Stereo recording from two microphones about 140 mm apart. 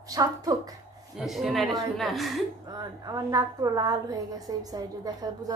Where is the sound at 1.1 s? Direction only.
Centre (ahead or behind).